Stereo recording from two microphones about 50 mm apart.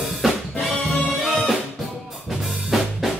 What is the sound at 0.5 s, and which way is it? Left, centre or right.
Music, left.